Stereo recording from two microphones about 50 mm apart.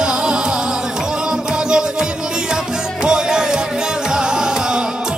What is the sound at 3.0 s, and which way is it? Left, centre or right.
Music, centre.